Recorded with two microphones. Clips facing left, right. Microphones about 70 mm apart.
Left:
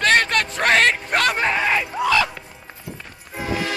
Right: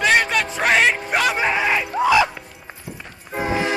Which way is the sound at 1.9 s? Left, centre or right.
Centre.